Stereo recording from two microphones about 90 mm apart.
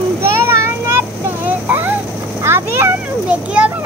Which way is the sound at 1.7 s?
20° right (ahead or behind).